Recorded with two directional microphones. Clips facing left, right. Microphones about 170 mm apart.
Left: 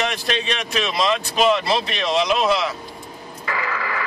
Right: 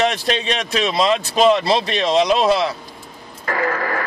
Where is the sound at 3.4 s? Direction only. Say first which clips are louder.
Right 6 dB; 45° right (ahead or behind).